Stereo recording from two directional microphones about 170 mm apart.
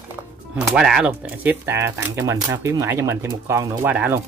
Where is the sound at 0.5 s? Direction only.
5° right (ahead or behind).